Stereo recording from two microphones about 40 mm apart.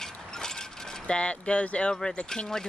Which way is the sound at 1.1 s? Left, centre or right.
Left.